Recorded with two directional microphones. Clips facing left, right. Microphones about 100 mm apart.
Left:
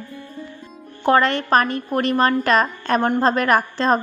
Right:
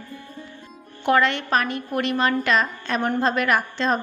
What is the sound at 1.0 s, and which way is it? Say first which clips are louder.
A woman's voice: left 3 dB; 40° left (ahead or behind).